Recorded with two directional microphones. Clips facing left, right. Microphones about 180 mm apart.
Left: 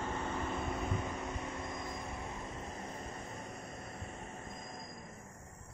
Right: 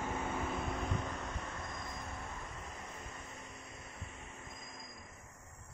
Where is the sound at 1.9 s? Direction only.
30° left (ahead or behind).